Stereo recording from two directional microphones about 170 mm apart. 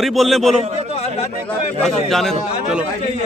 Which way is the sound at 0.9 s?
40° left (ahead or behind).